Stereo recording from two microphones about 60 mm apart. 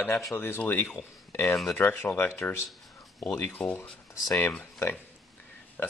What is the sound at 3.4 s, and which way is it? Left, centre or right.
Speech, left.